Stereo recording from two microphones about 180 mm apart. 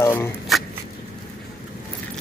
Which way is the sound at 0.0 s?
15° left (ahead or behind).